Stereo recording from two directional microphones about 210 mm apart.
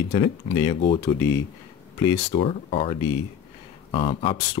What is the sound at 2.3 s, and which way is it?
Speech, 30° left (ahead or behind).